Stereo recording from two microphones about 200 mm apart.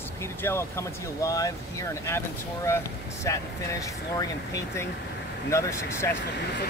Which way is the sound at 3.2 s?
15° left (ahead or behind).